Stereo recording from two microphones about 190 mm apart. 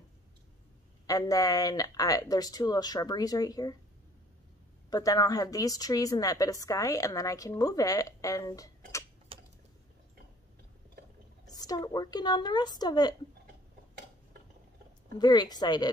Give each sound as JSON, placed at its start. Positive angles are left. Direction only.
{"t": 1.0, "sound": "speech", "side_deg": 20}
{"t": 4.8, "sound": "speech", "side_deg": 20}
{"t": 9.3, "sound": "a sound", "side_deg": -30}
{"t": 11.4, "sound": "speech", "side_deg": 20}
{"t": 15.1, "sound": "speech", "side_deg": 20}